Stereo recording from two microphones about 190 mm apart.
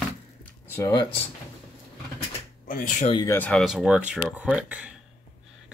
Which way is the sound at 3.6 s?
5° right (ahead or behind).